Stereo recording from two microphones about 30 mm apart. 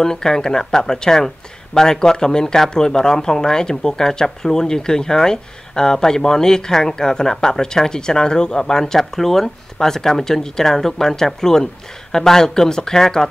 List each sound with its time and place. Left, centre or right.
0.0 s speech: centre
9.1 s speech: centre